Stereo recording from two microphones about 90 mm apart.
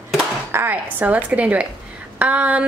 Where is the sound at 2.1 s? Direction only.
15° right (ahead or behind).